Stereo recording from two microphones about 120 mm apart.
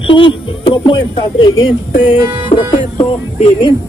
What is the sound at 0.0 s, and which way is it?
Speech, 45° left (ahead or behind).